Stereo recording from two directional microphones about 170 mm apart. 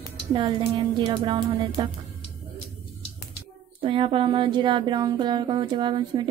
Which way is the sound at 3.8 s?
30° right (ahead or behind).